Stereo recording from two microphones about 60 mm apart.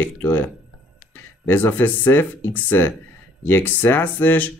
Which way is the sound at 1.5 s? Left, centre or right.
Left.